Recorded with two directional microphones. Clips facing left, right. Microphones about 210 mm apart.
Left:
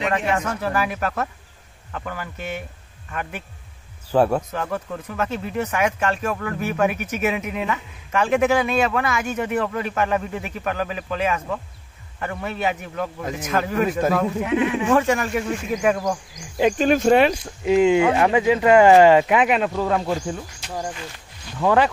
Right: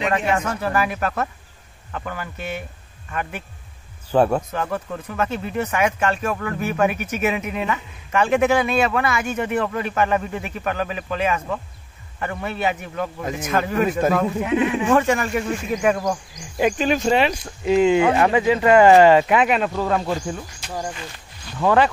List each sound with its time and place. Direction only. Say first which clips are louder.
0.3 s speech: right 1 dB; centre (ahead or behind)
14.4 s speech: right 1 dB; 25° right (ahead or behind)
14.9 s speech: even; centre (ahead or behind)
16.7 s speech: left 6 dB; 50° left (ahead or behind)
17.6 s speech: even; 15° left (ahead or behind)
21.5 s speech: right 1 dB; 15° left (ahead or behind)